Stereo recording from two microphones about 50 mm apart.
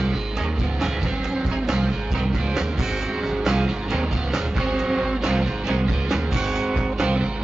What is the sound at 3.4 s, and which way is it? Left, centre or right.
Music, centre.